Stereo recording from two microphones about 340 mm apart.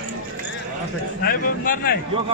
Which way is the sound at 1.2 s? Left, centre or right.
Left.